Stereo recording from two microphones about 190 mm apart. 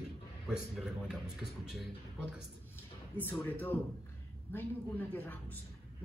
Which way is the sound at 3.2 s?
10° left (ahead or behind).